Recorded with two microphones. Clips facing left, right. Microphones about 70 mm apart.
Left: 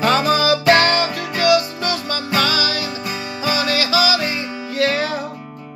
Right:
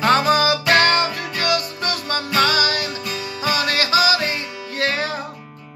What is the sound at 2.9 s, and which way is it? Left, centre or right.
Music, left.